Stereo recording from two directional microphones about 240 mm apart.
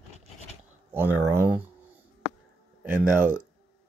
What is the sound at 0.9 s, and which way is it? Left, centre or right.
Speech, centre.